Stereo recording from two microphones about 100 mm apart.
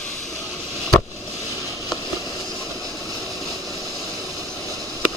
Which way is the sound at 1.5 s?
30° left (ahead or behind).